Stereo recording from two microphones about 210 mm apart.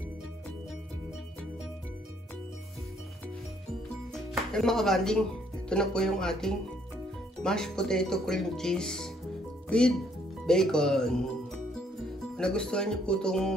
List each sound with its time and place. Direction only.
4.1 s music: centre (ahead or behind)
5.7 s speech: 5° left (ahead or behind)
12.4 s speech: 5° left (ahead or behind)